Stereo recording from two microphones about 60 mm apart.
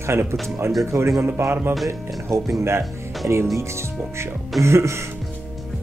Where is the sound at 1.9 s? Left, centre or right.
Right.